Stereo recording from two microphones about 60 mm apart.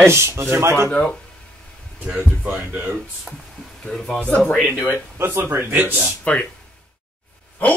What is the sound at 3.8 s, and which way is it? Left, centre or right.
Speech, centre.